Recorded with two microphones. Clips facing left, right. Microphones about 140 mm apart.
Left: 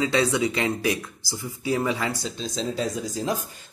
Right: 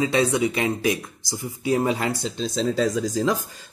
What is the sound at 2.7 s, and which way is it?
Speech, 90° right.